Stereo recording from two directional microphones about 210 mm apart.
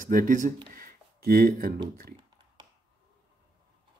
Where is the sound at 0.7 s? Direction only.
45° right (ahead or behind).